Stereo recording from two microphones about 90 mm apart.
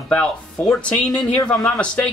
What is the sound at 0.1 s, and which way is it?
Speech, 15° left (ahead or behind).